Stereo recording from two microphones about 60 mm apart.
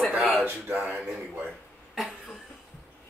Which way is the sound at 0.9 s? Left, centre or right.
Centre.